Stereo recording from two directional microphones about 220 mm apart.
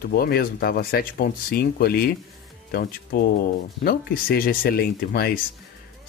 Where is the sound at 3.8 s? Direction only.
40° left (ahead or behind).